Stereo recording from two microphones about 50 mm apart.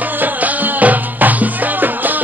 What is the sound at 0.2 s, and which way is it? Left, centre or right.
Music, right.